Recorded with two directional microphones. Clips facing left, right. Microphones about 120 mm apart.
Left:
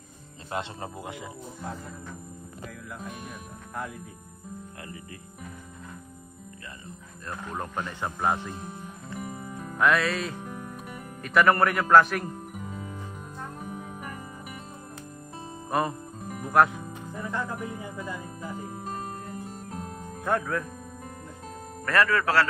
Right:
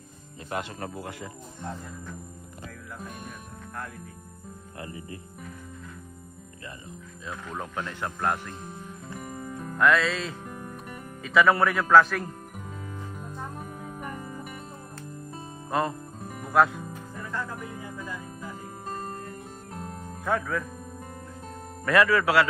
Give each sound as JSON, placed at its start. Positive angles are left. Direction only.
{"t": 0.5, "sound": "speech", "side_deg": 25}
{"t": 1.6, "sound": "speech", "side_deg": 0}
{"t": 2.6, "sound": "music", "side_deg": 0}
{"t": 3.7, "sound": "speech", "side_deg": 10}
{"t": 4.7, "sound": "cricket", "side_deg": -25}
{"t": 7.2, "sound": "speech", "side_deg": 0}
{"t": 9.2, "sound": "music", "side_deg": 5}
{"t": 17.3, "sound": "music", "side_deg": 20}
{"t": 17.6, "sound": "music", "side_deg": 5}
{"t": 21.8, "sound": "speech", "side_deg": 0}